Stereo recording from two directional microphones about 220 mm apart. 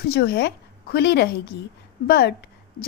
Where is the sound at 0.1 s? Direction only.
50° left (ahead or behind).